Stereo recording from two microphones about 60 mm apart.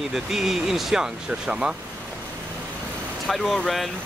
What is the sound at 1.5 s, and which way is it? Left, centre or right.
Speech, centre.